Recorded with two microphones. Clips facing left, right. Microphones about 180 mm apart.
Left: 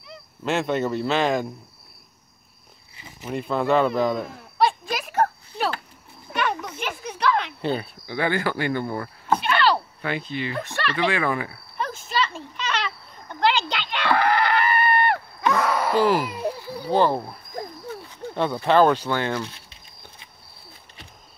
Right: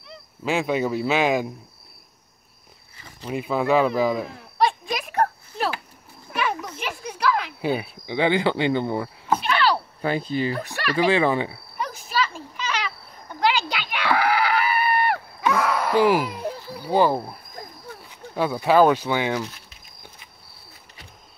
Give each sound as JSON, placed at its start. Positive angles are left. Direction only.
{"t": 0.4, "sound": "speech", "side_deg": -5}
{"t": 3.3, "sound": "a sound", "side_deg": -5}
{"t": 6.8, "sound": "cricket", "side_deg": 0}
{"t": 8.2, "sound": "speech", "side_deg": -20}
{"t": 9.3, "sound": "a sound", "side_deg": -5}
{"t": 10.0, "sound": "speech", "side_deg": -35}
{"t": 10.8, "sound": "speech", "side_deg": -10}
{"t": 11.1, "sound": "speech", "side_deg": -25}
{"t": 11.8, "sound": "a sound", "side_deg": -5}
{"t": 16.0, "sound": "speech", "side_deg": -10}
{"t": 19.5, "sound": "patter", "side_deg": 30}